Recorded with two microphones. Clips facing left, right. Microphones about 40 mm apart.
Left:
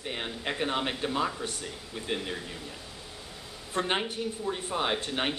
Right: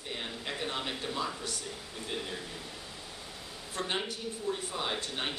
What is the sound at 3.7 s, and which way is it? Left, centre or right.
Speech, left.